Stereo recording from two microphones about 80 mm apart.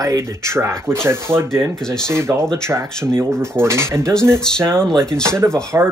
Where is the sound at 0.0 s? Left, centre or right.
Right.